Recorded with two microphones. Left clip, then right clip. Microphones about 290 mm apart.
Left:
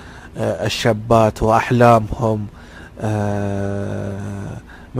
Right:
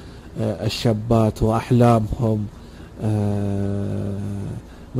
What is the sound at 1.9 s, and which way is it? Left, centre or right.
Speech, left.